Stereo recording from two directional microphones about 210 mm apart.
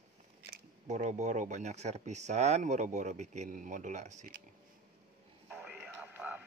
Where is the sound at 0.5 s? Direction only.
35° right (ahead or behind).